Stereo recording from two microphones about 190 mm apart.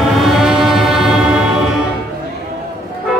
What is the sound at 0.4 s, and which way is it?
Music, centre (ahead or behind).